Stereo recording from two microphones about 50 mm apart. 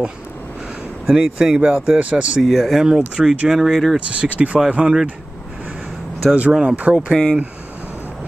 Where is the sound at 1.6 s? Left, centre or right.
Right.